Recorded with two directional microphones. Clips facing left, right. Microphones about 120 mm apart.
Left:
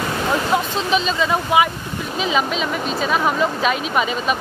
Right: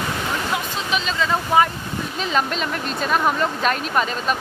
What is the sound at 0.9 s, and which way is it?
Speech, 20° left (ahead or behind).